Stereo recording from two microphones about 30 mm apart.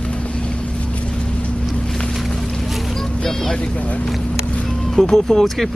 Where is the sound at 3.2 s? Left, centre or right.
Centre.